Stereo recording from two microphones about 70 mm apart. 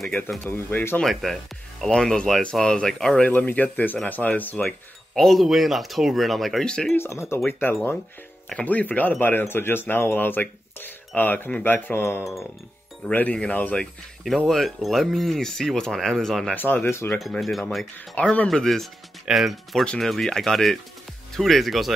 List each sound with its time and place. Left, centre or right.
0.4 s speech: left
1.0 s speech: centre; by 4.6 s left
4.6 s speech: centre
6.6 s speech: centre
7.0 s speech: left
13.1 s speech: centre
14.5 s speech: centre
16.5 s speech: left
17.4 s speech: centre
18.2 s speech: centre
18.5 s speech: centre